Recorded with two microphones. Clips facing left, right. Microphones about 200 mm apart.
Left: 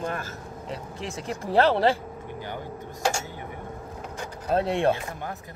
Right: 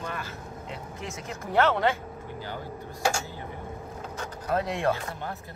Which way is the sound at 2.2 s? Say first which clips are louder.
Left 2 dB; 15° left (ahead or behind).